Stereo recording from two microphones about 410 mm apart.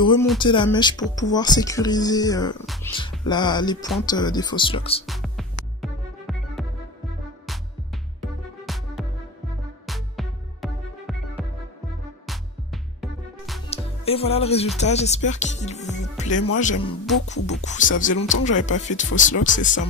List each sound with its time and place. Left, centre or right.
0.0 s music: centre
0.4 s speech: centre
5.0 s music: centre
8.2 s music: centre
12.3 s music: centre
13.7 s music: centre
14.8 s speech: centre